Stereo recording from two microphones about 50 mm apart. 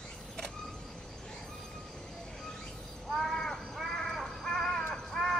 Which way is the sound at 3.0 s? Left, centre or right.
Centre.